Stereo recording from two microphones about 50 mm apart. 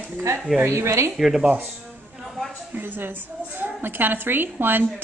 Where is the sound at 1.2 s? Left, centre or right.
Centre.